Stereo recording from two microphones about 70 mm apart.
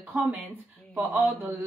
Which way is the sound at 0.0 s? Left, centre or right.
Right.